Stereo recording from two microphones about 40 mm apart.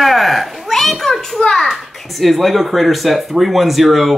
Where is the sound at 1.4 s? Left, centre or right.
Left.